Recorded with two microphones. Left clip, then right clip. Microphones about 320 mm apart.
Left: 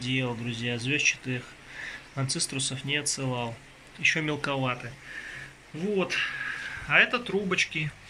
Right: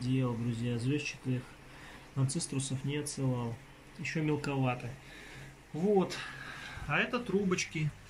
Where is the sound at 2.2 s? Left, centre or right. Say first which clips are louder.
Left 9 dB; centre.